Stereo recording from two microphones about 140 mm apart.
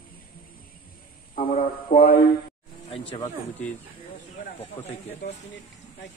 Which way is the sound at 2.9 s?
40° left (ahead or behind).